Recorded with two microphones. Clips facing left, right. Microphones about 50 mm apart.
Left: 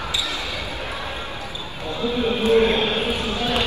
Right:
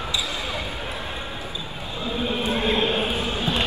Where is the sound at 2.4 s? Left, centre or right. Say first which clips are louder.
Left 6 dB; left.